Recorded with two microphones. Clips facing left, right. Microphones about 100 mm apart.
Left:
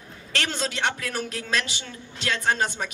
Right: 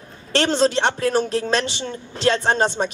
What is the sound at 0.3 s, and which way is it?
A woman's voice, 30° right (ahead or behind).